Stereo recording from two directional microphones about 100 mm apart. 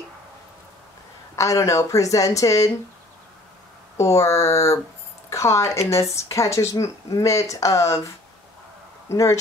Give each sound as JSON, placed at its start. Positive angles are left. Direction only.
{"t": 1.3, "sound": "speech", "side_deg": 30}
{"t": 4.0, "sound": "speech", "side_deg": 30}
{"t": 9.1, "sound": "speech", "side_deg": 30}